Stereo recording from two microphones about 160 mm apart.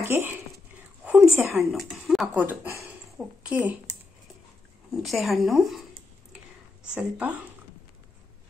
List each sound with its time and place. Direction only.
0.0 s speech: 15° right (ahead or behind)
1.0 s a sound: 5° right (ahead or behind)
1.5 s speech: centre (ahead or behind)
2.4 s a woman's voice: 15° right (ahead or behind)
4.9 s speech: centre (ahead or behind)
7.0 s speech: 10° right (ahead or behind)